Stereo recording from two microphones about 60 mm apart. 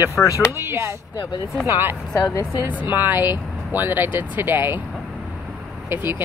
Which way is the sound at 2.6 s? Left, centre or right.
Right.